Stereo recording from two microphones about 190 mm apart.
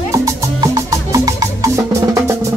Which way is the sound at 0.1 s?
15° right (ahead or behind).